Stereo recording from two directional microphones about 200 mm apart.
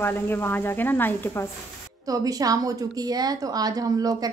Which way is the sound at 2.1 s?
20° right (ahead or behind).